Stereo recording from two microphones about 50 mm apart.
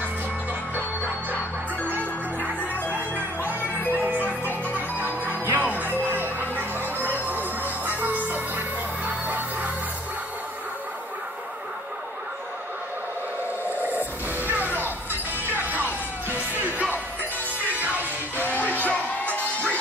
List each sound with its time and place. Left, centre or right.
3.9 s music: right
4.9 s music: left
5.4 s music: right
13.8 s music: right
18.4 s music: left